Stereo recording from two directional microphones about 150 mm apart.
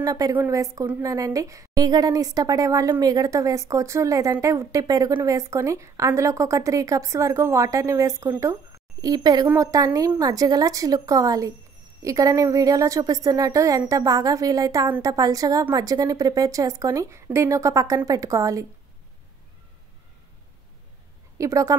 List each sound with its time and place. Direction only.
0.0 s a woman's voice: 25° right (ahead or behind)
21.4 s a woman's voice: 20° right (ahead or behind)